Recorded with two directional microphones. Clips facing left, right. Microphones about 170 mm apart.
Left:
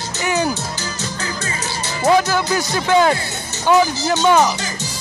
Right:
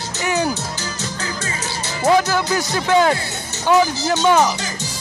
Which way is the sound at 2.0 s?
20° left (ahead or behind).